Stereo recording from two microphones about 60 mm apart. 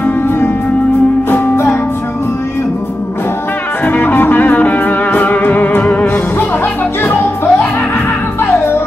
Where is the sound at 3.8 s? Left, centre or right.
Left.